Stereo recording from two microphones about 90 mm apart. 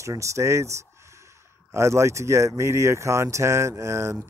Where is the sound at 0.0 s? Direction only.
35° right (ahead or behind).